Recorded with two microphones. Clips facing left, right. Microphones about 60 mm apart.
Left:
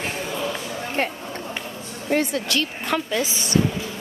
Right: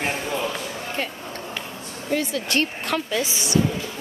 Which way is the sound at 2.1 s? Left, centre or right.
Left.